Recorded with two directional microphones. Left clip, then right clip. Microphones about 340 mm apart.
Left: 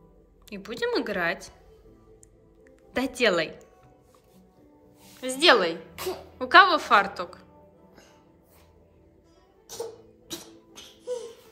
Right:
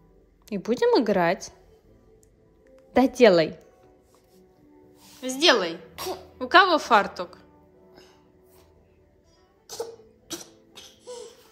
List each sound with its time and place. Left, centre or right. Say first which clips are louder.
0.5 s a woman's voice: right 8 dB; centre
2.6 s a woman's voice: right 8 dB; centre
5.2 s a woman's voice: left 1 dB; centre